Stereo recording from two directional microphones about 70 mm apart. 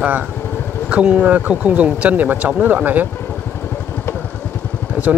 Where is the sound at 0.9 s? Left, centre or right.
Centre.